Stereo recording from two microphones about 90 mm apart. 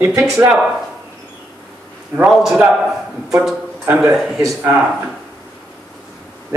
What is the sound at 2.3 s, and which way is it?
Speech, centre (ahead or behind).